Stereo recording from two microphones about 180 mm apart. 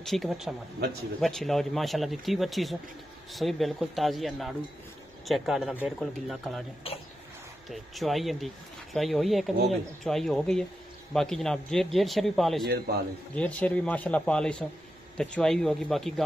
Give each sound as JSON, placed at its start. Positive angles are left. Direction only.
{"t": 0.0, "sound": "speech", "side_deg": 0}
{"t": 6.8, "sound": "speech", "side_deg": 30}
{"t": 7.7, "sound": "speech", "side_deg": 0}
{"t": 12.6, "sound": "a man's voice", "side_deg": -60}
{"t": 13.3, "sound": "speech", "side_deg": 10}